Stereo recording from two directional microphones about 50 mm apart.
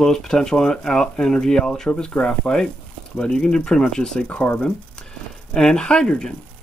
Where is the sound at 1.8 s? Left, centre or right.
Left.